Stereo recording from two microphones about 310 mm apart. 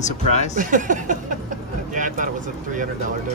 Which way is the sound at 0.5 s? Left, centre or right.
Right.